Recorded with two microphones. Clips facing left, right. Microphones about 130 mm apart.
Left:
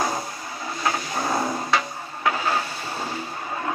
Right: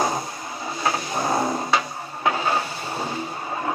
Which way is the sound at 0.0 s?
20° right (ahead or behind).